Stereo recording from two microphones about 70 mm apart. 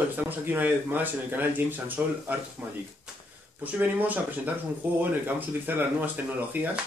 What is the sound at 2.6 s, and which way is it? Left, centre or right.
Speech, centre.